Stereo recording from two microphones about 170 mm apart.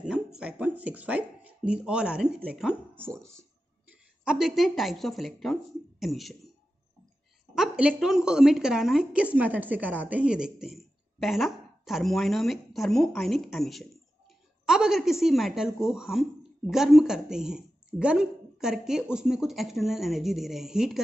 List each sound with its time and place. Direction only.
0.0 s speech: 5° right (ahead or behind)
3.2 s speech: 15° right (ahead or behind)
4.2 s a woman's voice: 5° right (ahead or behind)
7.5 s a woman's voice: 5° right (ahead or behind)